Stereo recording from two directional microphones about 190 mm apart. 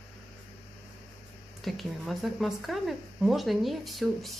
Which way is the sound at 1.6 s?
Centre (ahead or behind).